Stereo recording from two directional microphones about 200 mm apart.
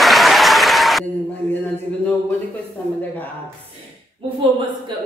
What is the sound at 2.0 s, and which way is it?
Speech, 10° left (ahead or behind).